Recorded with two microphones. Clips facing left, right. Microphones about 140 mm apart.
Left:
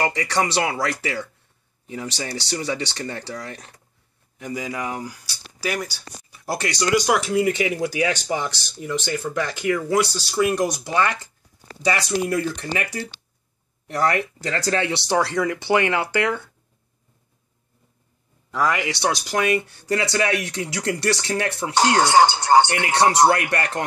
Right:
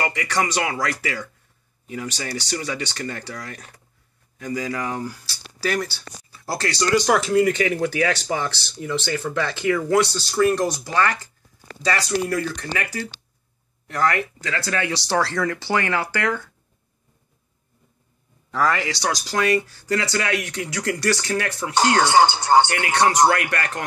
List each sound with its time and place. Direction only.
0.1 s speech: 30° left (ahead or behind)
14.8 s speech: 25° left (ahead or behind)
18.5 s speech: 10° left (ahead or behind)
21.7 s speech: 15° left (ahead or behind)
22.7 s speech: 25° left (ahead or behind)